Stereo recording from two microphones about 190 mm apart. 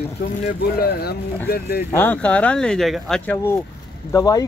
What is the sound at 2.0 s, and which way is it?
Speech, 10° left (ahead or behind).